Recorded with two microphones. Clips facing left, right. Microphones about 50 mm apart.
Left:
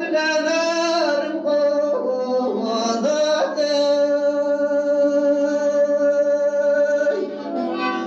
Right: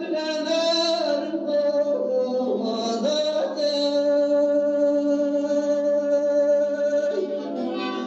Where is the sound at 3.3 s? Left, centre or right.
Left.